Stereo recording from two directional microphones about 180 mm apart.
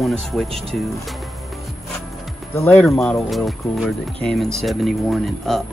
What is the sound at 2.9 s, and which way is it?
Speech, centre (ahead or behind).